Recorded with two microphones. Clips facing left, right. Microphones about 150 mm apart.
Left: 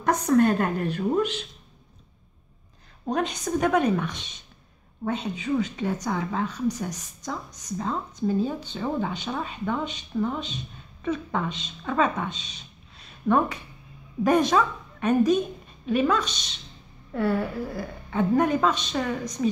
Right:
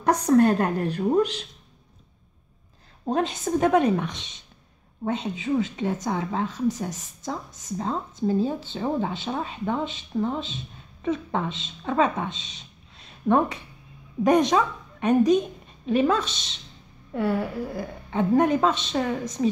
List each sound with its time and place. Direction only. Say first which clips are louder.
0.0 s a woman's voice: right 2 dB; 35° right (ahead or behind)
3.1 s a woman's voice: right 2 dB; 25° right (ahead or behind)
17.1 s speech: even; 15° right (ahead or behind)
18.1 s speech: right 2 dB; 25° right (ahead or behind)